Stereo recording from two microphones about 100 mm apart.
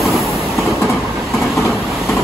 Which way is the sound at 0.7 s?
30° left (ahead or behind).